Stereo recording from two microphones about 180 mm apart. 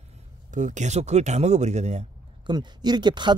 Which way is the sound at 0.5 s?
45° right (ahead or behind).